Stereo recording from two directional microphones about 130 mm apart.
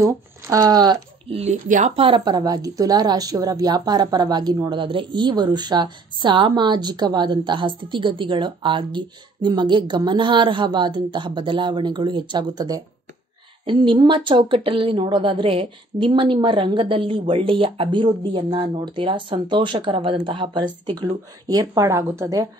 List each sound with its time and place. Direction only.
0.0 s speech: 25° right (ahead or behind)
1.3 s speech: 60° right (ahead or behind)
2.0 s a woman's voice: 40° right (ahead or behind)
13.7 s a woman's voice: 40° right (ahead or behind)
21.5 s speech: 25° right (ahead or behind)